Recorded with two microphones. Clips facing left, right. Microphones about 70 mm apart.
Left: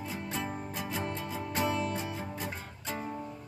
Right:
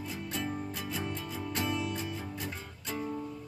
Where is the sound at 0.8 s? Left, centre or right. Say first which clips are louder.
Left 2 dB; left.